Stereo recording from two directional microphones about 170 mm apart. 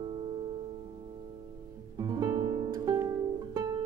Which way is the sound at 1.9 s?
25° right (ahead or behind).